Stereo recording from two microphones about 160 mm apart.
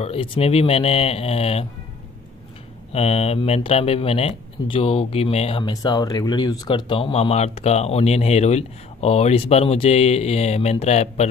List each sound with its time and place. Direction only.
0.0 s speech: 35° left (ahead or behind)
2.9 s speech: 40° left (ahead or behind)
5.6 s speech: 25° left (ahead or behind); by 11.2 s 40° left (ahead or behind)